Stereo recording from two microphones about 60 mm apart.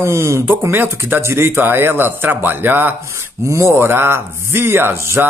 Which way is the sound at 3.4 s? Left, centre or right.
Right.